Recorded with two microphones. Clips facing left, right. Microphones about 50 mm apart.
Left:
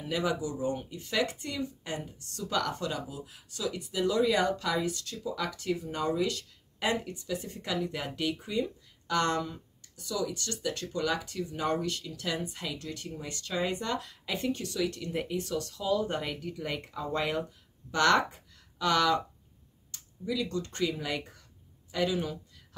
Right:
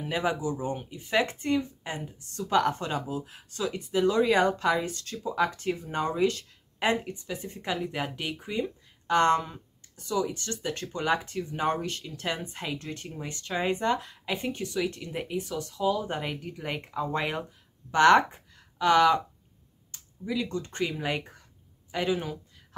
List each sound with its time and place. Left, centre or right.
0.0 s speech: right
1.1 s speech: right